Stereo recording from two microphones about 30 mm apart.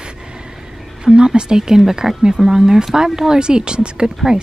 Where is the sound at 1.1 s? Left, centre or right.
Centre.